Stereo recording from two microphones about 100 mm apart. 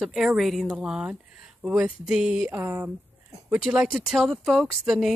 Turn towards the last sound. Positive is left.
turn(degrees=-5)  # may be behind; listen again after turning